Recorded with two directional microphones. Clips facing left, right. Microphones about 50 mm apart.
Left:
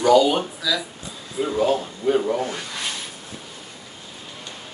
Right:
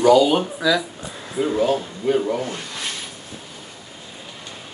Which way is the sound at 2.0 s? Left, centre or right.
Right.